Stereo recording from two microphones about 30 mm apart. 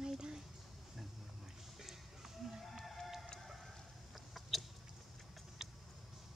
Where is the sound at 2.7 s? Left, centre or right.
Centre.